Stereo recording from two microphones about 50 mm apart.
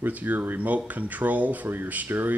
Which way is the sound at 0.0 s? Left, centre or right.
Right.